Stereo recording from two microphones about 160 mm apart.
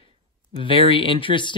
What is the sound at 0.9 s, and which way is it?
Speech, 30° left (ahead or behind).